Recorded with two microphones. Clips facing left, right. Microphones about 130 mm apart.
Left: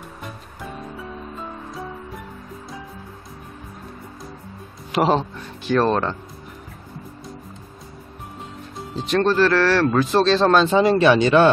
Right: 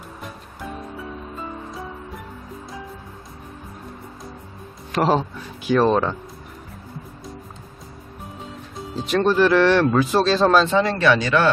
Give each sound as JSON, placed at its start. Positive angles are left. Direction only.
{"t": 1.3, "sound": "music", "side_deg": 0}
{"t": 4.9, "sound": "a man's voice", "side_deg": 0}
{"t": 8.9, "sound": "a man's voice", "side_deg": -5}
{"t": 10.7, "sound": "speech", "side_deg": 20}